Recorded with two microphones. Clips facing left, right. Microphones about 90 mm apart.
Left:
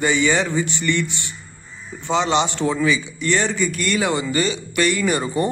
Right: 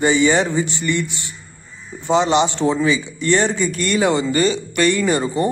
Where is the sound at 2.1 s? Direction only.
20° right (ahead or behind).